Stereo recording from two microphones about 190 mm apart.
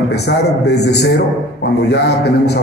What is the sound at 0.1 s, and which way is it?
A woman's voice, 60° left (ahead or behind).